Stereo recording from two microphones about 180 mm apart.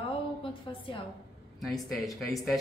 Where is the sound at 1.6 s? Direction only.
Centre (ahead or behind).